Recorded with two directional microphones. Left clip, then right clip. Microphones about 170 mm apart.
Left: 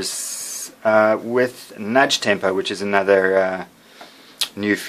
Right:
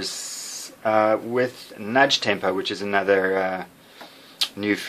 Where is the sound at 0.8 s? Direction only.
35° left (ahead or behind).